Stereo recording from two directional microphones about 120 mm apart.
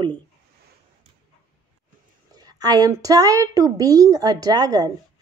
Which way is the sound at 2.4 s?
35° right (ahead or behind).